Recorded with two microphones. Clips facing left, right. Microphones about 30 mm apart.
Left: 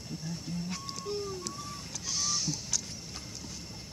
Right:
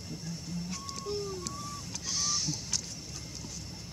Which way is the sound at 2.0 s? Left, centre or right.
Centre.